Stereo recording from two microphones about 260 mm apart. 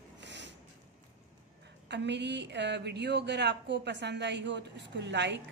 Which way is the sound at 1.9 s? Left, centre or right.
Right.